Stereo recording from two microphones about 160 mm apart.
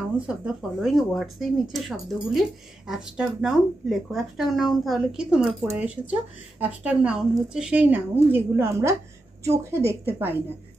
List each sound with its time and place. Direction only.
0.3 s a woman's voice: centre (ahead or behind)